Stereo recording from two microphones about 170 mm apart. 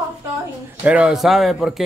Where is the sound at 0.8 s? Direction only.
5° right (ahead or behind).